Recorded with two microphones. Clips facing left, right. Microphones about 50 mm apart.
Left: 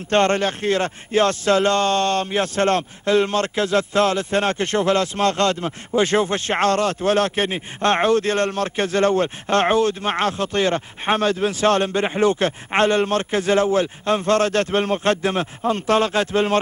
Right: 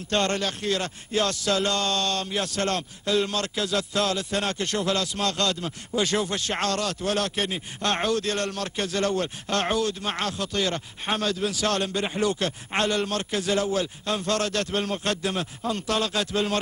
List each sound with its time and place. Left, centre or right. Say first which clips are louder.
0.1 s speech: left 7 dB; left